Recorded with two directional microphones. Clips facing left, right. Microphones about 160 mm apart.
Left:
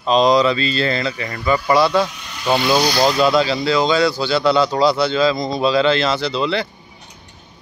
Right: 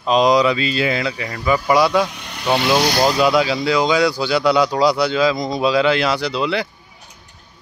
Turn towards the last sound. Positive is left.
turn(degrees=-10)  # may be behind; listen again after turning